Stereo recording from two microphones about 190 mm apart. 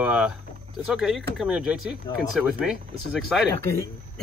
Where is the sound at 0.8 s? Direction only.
Centre (ahead or behind).